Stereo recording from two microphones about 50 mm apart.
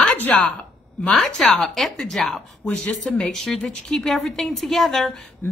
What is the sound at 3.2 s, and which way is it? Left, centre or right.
A woman's voice, centre.